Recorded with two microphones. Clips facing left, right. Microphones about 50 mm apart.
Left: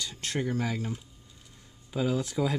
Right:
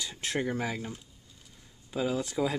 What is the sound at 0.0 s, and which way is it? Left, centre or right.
Speech, centre.